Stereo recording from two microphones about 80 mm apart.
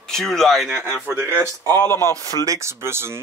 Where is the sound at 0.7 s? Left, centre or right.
Right.